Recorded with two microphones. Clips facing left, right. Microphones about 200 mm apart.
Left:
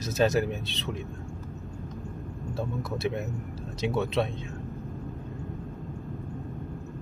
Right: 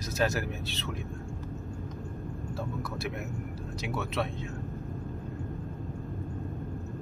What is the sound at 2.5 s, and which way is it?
Speech, 20° left (ahead or behind).